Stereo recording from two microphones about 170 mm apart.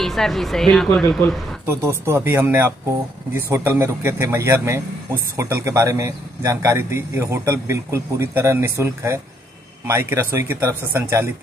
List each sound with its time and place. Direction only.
0.0 s a woman's voice: centre (ahead or behind)
1.7 s speech: 15° right (ahead or behind)